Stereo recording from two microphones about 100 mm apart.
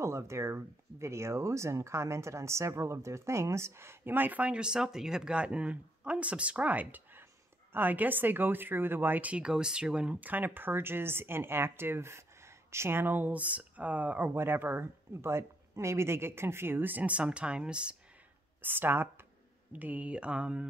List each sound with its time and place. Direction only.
0.0 s speech: 30° right (ahead or behind); by 17.9 s 10° right (ahead or behind)
18.6 s speech: 20° right (ahead or behind)